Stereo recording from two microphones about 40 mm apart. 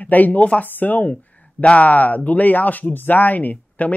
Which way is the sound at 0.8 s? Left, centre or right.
Left.